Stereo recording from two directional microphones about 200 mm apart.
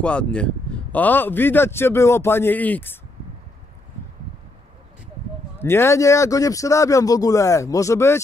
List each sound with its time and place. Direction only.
0.0 s a man's voice: 5° left (ahead or behind)
5.6 s a man's voice: 10° left (ahead or behind)